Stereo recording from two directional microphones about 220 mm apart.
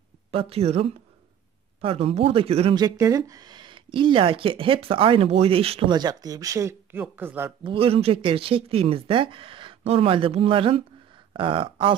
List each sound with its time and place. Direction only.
0.3 s speech: 25° right (ahead or behind); by 7.5 s 10° right (ahead or behind)
7.6 s speech: 25° right (ahead or behind)